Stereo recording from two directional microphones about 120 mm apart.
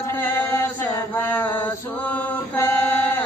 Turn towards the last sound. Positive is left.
turn(degrees=15)  # may be behind; listen again after turning